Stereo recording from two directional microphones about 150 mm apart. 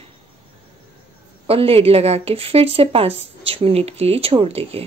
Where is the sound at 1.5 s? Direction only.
40° right (ahead or behind).